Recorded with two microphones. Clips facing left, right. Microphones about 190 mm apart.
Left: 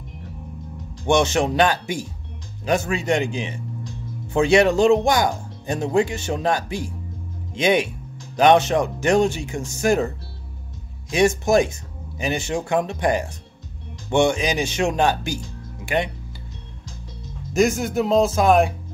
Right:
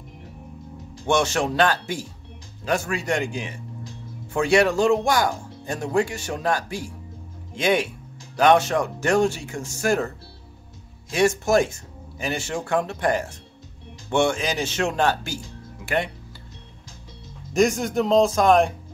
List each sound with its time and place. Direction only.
1.0 s speech: 20° left (ahead or behind)
17.5 s speech: centre (ahead or behind)